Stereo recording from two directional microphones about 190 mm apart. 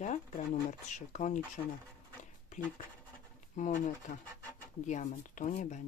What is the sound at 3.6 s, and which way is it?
Speech, 40° left (ahead or behind).